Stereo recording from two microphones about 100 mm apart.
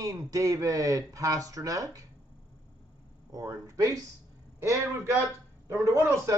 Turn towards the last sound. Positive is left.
turn(degrees=-30)  # may be behind; listen again after turning